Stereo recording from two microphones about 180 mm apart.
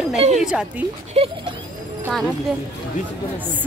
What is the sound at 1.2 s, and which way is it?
Speech, 35° right (ahead or behind).